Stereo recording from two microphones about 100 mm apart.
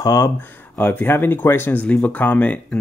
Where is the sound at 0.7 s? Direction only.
15° left (ahead or behind).